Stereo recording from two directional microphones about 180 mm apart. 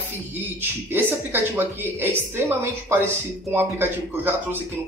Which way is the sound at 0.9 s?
10° right (ahead or behind).